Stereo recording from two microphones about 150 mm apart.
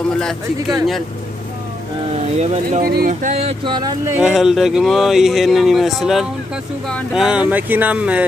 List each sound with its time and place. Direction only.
0.2 s speech: centre (ahead or behind)
2.3 s speech: 45° right (ahead or behind)
2.8 s speech: 75° right (ahead or behind); by 3.4 s 55° right (ahead or behind)
3.4 s speech: 30° right (ahead or behind)
4.2 s speech: centre (ahead or behind)